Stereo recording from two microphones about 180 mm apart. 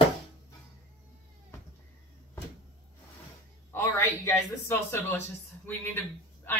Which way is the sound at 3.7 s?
15° left (ahead or behind).